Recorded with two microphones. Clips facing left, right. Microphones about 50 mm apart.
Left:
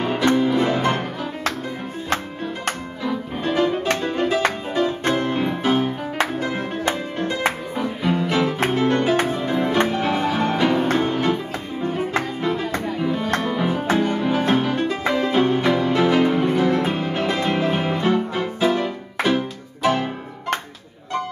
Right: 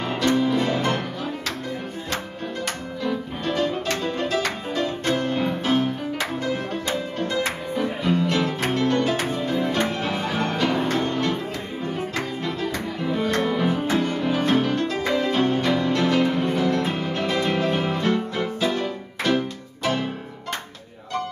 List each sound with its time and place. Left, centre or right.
0.2 s music: left
3.0 s music: centre
13.4 s music: centre